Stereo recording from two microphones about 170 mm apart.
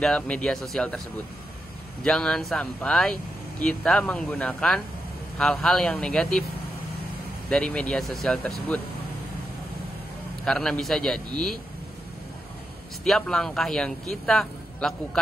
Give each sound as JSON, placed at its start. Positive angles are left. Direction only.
{"t": 0.0, "sound": "speech", "side_deg": 5}
{"t": 2.0, "sound": "speech", "side_deg": 5}
{"t": 7.4, "sound": "speech", "side_deg": 5}
{"t": 10.4, "sound": "speech", "side_deg": 5}
{"t": 13.0, "sound": "speech", "side_deg": 5}